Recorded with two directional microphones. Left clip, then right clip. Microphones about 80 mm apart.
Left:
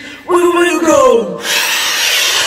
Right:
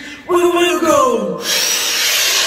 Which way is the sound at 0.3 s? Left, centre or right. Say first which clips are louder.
Left 3 dB; right.